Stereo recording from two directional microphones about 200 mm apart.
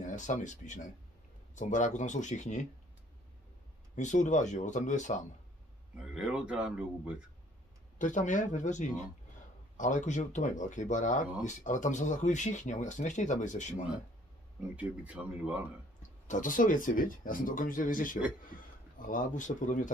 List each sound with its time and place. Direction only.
0.0 s speech: 40° left (ahead or behind)
3.9 s speech: 35° left (ahead or behind)
6.1 s speech: 5° right (ahead or behind)
8.0 s speech: 40° left (ahead or behind)
14.8 s speech: 5° right (ahead or behind)
16.3 s a man's voice: 40° left (ahead or behind)